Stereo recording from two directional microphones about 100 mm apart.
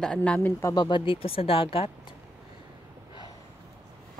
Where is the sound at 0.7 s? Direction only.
50° left (ahead or behind).